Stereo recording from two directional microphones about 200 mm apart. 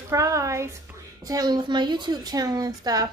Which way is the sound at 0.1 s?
15° right (ahead or behind).